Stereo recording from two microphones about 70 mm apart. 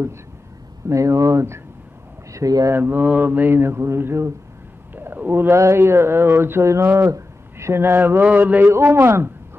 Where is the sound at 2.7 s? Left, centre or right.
Right.